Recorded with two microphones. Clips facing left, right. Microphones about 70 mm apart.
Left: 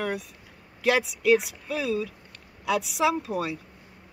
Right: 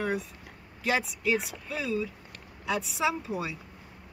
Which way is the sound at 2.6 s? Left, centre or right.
Left.